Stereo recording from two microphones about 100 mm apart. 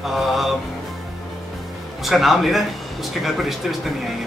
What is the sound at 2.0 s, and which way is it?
Speech, centre (ahead or behind).